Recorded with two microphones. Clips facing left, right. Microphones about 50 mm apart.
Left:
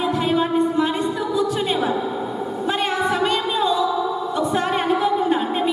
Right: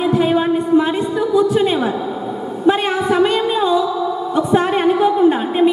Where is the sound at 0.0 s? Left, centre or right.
Centre.